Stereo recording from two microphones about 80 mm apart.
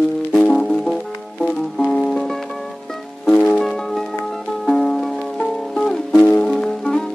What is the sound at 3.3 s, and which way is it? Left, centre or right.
Music, centre.